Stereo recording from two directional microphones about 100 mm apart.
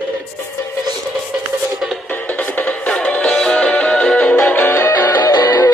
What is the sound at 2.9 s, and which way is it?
Music, 10° left (ahead or behind).